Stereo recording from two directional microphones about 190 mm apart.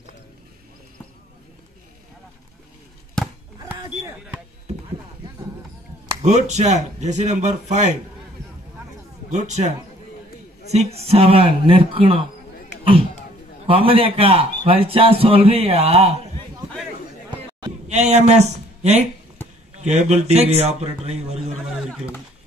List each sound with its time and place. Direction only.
6.2 s speech: 40° right (ahead or behind)
9.3 s speech: 40° right (ahead or behind)
10.7 s speech: 35° right (ahead or behind)
13.7 s a man's voice: 30° right (ahead or behind)
17.3 s a sound: 25° right (ahead or behind)
17.8 s speech: 35° right (ahead or behind)